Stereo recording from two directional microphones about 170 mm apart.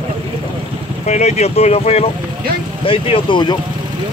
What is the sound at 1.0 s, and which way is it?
Speech, 40° left (ahead or behind).